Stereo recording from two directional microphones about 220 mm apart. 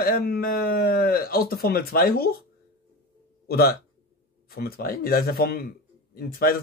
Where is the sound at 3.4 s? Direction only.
45° left (ahead or behind).